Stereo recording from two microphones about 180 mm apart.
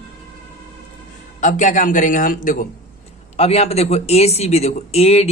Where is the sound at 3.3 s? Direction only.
35° left (ahead or behind).